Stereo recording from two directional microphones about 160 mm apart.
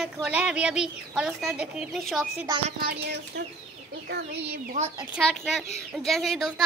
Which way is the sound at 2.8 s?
90° right.